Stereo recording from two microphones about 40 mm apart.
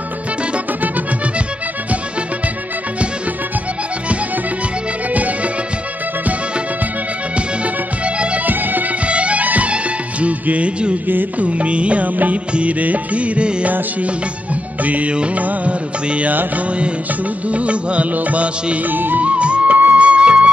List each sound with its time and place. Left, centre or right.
5.1 s music: right
7.3 s music: right
8.5 s music: right
9.0 s music: right
14.8 s music: right
17.5 s music: right
18.9 s music: right
19.2 s music: right